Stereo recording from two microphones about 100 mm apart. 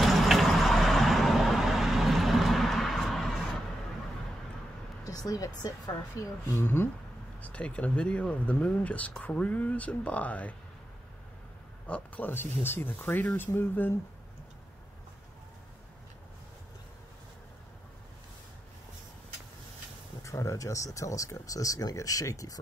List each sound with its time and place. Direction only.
0.0 s vehicle: centre (ahead or behind)
5.0 s speech: 35° left (ahead or behind)
6.1 s speech: 25° left (ahead or behind)
11.9 s speech: 15° left (ahead or behind)
20.2 s speech: 30° left (ahead or behind)